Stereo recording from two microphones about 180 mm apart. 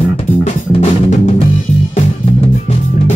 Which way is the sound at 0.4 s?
40° left (ahead or behind).